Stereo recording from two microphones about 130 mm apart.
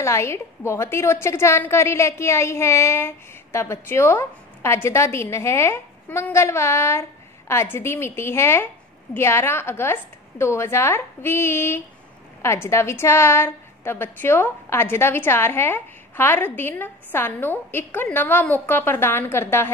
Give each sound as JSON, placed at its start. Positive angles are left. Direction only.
{"t": 0.0, "sound": "a woman's voice", "side_deg": 20}